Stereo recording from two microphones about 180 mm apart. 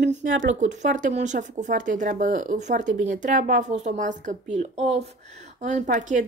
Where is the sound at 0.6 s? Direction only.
45° right (ahead or behind).